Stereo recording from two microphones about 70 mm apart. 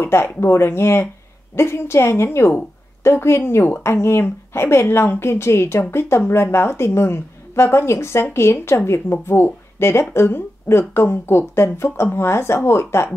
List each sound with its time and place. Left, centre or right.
0.0 s a woman's voice: left